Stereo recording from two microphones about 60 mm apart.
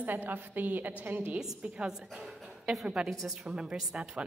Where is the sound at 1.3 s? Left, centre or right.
Centre.